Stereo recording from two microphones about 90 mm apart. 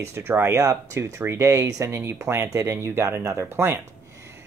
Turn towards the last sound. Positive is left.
turn(degrees=-30)  # may be behind; listen again after turning